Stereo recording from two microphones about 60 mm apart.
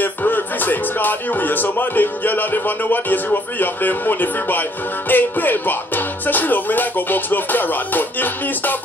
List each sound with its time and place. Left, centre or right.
0.0 s speech: left